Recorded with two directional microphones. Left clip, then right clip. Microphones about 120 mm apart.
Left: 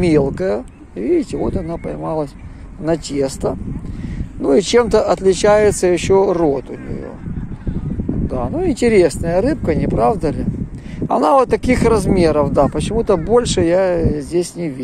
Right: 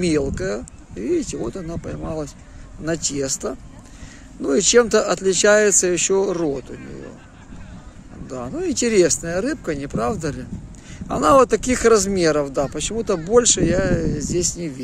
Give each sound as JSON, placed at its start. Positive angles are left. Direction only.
{"t": 0.0, "sound": "speech", "side_deg": -35}
{"t": 8.3, "sound": "speech", "side_deg": -35}